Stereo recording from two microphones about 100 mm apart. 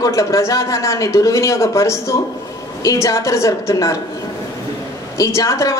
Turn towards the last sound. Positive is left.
turn(degrees=30)  # may be behind; listen again after turning